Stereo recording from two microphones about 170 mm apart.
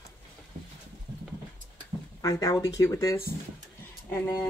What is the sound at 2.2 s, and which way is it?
Speech, 20° left (ahead or behind).